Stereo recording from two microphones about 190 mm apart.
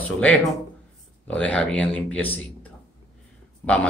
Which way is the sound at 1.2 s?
5° left (ahead or behind).